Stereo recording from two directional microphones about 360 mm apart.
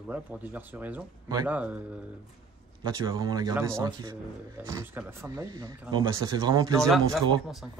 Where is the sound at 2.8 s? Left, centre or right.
Centre.